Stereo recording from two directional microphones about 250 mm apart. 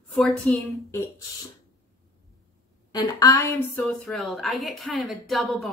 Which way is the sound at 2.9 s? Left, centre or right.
Centre.